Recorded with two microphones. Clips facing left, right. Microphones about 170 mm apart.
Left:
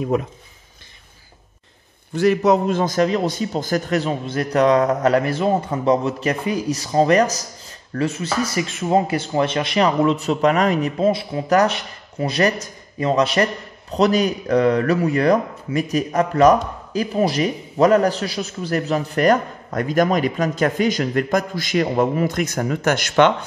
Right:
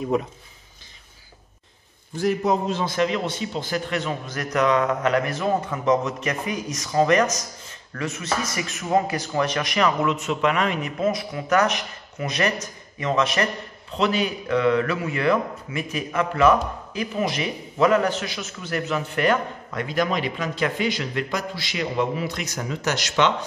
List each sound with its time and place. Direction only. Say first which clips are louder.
2.1 s a man's voice: left 6 dB; 75° left (ahead or behind); by 23.3 s 55° left (ahead or behind)